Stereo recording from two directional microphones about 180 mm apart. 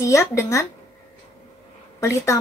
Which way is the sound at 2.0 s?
15° left (ahead or behind).